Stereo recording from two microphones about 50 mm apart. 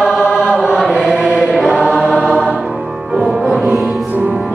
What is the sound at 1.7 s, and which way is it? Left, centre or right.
Choir, centre.